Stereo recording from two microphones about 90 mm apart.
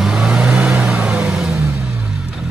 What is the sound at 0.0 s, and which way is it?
Vehicle, 5° right (ahead or behind).